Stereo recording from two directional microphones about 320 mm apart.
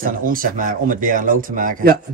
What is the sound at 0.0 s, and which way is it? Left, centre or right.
Speech, right.